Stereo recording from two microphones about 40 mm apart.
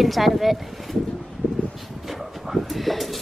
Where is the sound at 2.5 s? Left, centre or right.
Centre.